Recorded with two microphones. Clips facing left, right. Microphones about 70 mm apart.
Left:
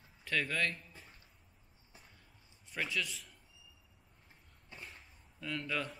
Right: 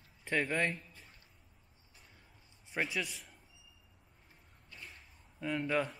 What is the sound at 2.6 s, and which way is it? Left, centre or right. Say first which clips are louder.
Speech: right 2 dB; right.